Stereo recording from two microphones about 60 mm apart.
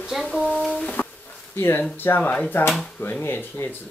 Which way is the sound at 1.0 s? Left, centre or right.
Left.